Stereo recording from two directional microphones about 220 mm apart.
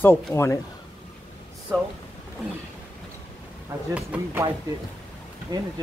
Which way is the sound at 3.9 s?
10° right (ahead or behind).